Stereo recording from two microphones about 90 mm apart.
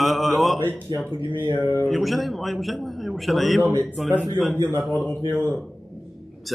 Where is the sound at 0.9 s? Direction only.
50° right (ahead or behind).